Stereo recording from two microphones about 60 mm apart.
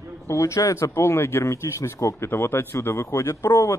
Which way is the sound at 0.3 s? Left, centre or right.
Left.